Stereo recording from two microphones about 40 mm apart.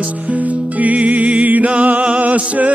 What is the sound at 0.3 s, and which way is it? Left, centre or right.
Music, right.